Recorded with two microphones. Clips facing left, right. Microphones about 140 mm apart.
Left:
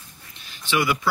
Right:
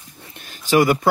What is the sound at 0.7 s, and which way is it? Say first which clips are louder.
Speech: right 7 dB; 45° right (ahead or behind).